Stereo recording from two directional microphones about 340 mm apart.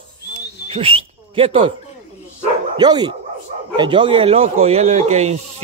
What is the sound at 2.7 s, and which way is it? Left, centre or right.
A man's voice, centre.